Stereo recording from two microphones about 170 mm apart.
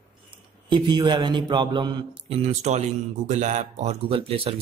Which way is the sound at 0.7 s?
25° right (ahead or behind).